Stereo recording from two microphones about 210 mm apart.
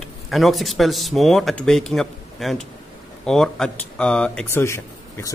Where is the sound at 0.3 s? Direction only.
Centre (ahead or behind).